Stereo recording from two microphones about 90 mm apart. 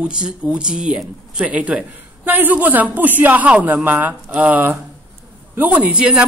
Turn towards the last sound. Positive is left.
turn(degrees=-10)  # may be behind; listen again after turning